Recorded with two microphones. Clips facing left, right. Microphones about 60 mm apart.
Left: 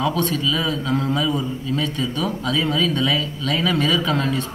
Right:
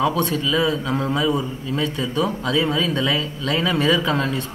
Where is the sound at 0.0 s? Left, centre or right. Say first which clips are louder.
Right 1 dB; centre.